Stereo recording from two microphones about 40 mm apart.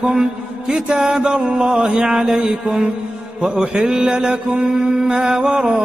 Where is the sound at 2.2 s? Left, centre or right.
Centre.